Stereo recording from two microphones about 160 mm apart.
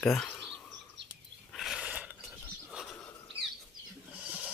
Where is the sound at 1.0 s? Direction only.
90° right.